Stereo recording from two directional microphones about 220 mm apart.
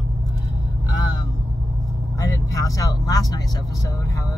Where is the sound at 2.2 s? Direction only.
15° left (ahead or behind).